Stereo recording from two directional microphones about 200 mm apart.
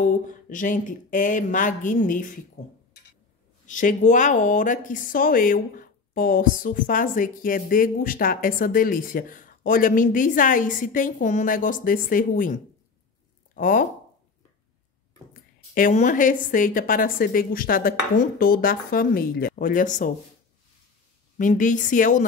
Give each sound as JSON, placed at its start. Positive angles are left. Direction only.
{"t": 0.0, "sound": "speech", "side_deg": 40}
{"t": 13.6, "sound": "speech", "side_deg": 40}
{"t": 15.7, "sound": "speech", "side_deg": 40}
{"t": 21.4, "sound": "speech", "side_deg": 40}